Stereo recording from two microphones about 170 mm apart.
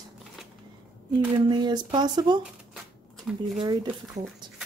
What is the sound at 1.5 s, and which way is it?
Speech, 25° right (ahead or behind).